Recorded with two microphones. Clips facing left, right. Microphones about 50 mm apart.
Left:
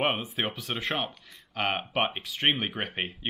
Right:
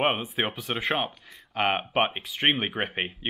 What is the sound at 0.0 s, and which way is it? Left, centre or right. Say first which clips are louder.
Speech: right 3 dB; centre.